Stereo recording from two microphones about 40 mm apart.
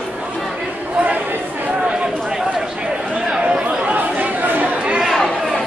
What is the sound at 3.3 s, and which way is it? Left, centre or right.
Chatter, right.